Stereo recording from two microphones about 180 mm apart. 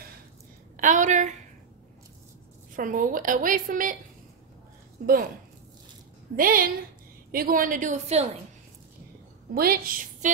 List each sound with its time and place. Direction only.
0.7 s a woman's voice: 45° right (ahead or behind)
2.7 s a woman's voice: 45° right (ahead or behind)
6.3 s a woman's voice: 50° right (ahead or behind)
9.5 s a woman's voice: 55° right (ahead or behind)